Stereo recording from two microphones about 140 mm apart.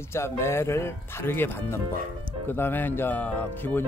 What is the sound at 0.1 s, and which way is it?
Speech, 20° left (ahead or behind).